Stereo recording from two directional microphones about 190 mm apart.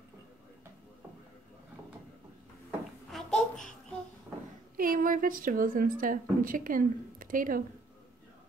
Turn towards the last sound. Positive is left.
turn(degrees=-45)  # may be behind; listen again after turning